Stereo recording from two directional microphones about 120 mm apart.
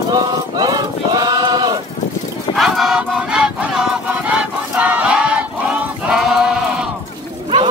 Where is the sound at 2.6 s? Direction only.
Centre (ahead or behind).